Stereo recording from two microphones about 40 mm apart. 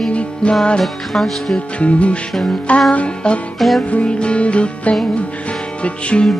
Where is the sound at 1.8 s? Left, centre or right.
Left.